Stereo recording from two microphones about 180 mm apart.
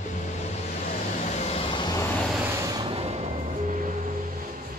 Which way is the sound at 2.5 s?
25° right (ahead or behind).